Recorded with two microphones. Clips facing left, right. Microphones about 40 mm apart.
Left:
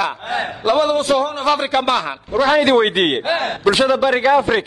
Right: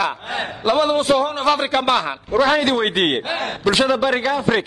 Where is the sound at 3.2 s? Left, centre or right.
Left.